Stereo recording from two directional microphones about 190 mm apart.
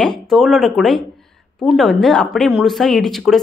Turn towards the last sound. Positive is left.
turn(degrees=0)  # may be behind; listen again after turning